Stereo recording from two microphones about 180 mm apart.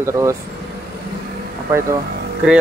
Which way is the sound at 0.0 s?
15° right (ahead or behind).